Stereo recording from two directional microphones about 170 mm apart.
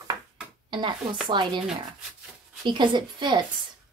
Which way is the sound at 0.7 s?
30° right (ahead or behind).